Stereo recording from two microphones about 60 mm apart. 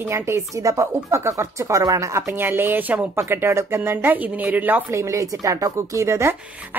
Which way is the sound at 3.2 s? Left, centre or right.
Right.